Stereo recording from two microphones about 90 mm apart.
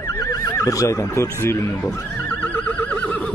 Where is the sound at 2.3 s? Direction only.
15° left (ahead or behind).